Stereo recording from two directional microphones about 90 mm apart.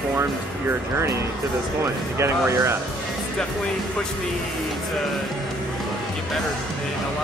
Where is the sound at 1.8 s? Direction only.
30° right (ahead or behind).